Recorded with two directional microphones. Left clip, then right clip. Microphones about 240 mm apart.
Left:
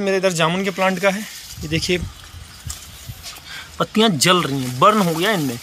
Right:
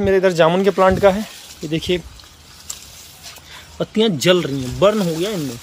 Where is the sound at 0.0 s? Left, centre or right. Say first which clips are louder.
Right 4 dB; centre.